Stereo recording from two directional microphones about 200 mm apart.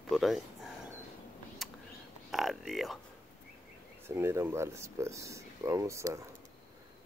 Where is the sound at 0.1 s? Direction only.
Centre (ahead or behind).